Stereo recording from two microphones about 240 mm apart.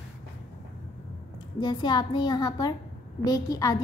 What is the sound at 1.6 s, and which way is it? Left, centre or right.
A woman's voice, centre.